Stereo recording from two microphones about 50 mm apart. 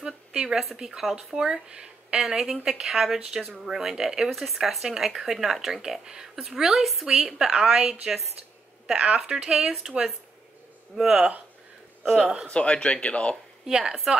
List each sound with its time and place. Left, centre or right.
0.0 s speech: centre
2.1 s speech: centre
7.2 s speech: centre
8.9 s speech: right; by 10.1 s centre
11.1 s speech: right
12.4 s speech: left
13.7 s speech: centre